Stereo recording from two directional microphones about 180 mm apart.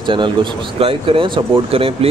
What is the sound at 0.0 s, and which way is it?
Speech, 25° right (ahead or behind).